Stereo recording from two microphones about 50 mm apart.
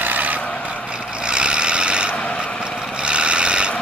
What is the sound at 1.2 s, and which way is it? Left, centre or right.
Vehicle, centre.